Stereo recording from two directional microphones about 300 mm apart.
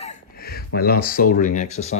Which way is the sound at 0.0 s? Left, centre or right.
Left.